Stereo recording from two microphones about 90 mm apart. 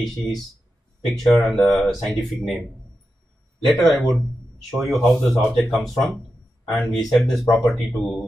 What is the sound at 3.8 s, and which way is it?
Speech, centre (ahead or behind).